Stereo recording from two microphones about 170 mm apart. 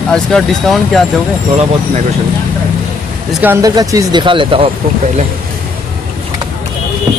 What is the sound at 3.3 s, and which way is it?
Speech, 10° right (ahead or behind).